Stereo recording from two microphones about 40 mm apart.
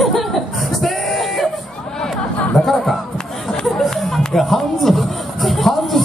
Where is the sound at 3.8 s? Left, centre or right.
Centre.